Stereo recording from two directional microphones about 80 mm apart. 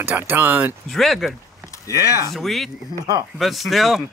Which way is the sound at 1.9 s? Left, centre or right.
Left.